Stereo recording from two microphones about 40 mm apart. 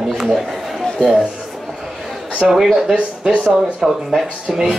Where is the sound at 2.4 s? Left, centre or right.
Centre.